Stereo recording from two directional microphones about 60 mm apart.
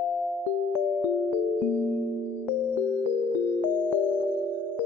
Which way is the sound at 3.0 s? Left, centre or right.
Right.